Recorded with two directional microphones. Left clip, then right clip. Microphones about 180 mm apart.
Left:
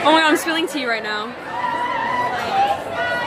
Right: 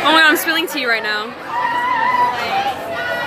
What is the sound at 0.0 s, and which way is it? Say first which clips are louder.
Speech: right 3 dB; 30° left (ahead or behind).